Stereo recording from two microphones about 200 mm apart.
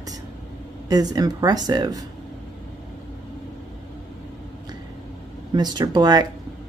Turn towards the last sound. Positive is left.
turn(degrees=-20)  # may be behind; listen again after turning